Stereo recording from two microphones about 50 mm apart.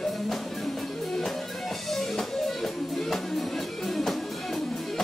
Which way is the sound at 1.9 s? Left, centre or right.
Centre.